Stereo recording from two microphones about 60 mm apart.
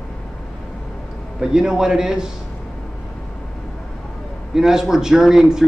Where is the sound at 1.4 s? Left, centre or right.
Centre.